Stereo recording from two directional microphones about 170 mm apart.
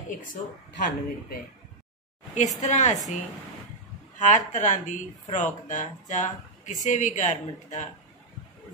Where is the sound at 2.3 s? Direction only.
45° left (ahead or behind).